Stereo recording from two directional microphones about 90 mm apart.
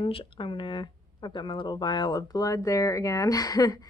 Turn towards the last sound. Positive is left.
turn(degrees=45)  # may be behind; listen again after turning